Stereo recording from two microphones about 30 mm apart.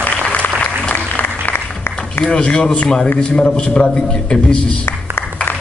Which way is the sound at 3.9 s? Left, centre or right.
Left.